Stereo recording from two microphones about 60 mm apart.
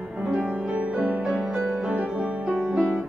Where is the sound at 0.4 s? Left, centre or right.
Centre.